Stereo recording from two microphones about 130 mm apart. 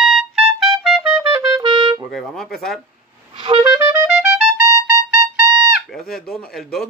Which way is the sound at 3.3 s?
40° right (ahead or behind).